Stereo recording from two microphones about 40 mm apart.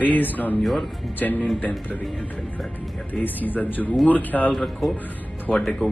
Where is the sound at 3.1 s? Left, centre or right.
Left.